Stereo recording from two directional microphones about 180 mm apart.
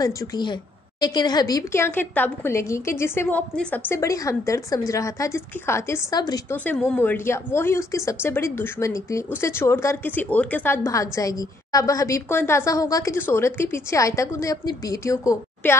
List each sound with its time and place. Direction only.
0.0 s a woman's voice: 20° left (ahead or behind)
6.5 s a woman's voice: 10° left (ahead or behind)